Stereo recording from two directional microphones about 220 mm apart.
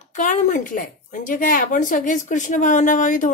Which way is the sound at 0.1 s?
35° left (ahead or behind).